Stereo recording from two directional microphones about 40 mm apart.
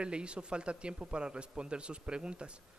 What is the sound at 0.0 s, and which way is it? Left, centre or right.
A man's voice, right.